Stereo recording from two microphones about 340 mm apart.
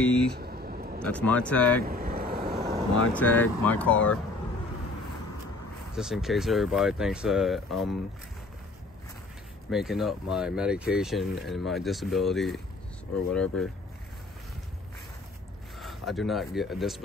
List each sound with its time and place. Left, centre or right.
0.4 s a sound: right
1.0 s speech: centre
1.8 s vehicle: right
3.1 s speech: centre
5.9 s speech: centre
9.7 s speech: centre
15.8 s speech: centre